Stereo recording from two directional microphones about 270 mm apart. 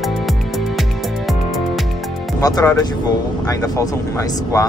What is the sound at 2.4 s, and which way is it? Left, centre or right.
Speech, centre.